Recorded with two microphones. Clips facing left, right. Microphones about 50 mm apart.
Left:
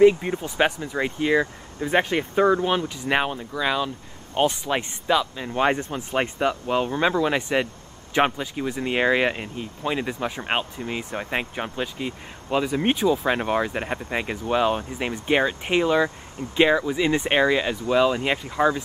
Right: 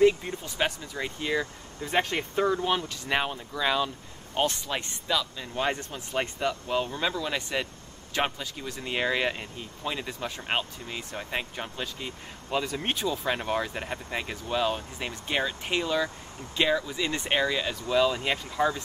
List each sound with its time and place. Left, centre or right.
0.0 s speech: left; by 3.9 s centre
4.4 s speech: centre